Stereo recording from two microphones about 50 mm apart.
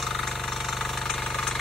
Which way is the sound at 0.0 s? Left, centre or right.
Centre.